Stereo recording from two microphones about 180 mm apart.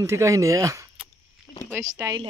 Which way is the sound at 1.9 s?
20° right (ahead or behind).